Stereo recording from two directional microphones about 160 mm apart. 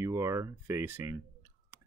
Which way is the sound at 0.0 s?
15° right (ahead or behind).